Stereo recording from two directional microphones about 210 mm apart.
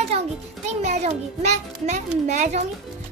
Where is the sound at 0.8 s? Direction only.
30° right (ahead or behind).